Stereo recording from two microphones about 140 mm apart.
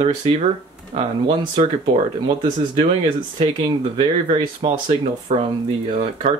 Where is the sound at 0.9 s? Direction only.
35° right (ahead or behind).